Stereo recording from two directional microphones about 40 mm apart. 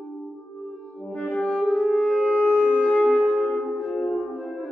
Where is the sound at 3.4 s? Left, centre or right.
Left.